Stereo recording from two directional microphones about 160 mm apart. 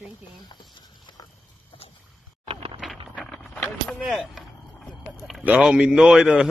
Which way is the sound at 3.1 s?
5° left (ahead or behind).